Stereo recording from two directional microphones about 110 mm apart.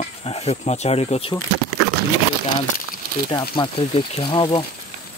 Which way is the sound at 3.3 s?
45° left (ahead or behind).